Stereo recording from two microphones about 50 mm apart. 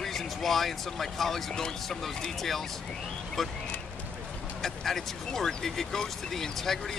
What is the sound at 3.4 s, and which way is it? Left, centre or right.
Speech, centre.